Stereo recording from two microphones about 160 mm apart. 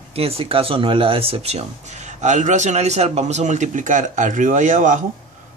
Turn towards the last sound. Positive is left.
turn(degrees=-50)  # may be behind; listen again after turning